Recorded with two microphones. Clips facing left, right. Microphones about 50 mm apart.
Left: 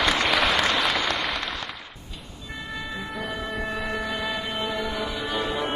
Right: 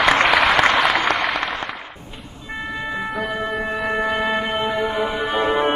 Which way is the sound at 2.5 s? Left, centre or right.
Right.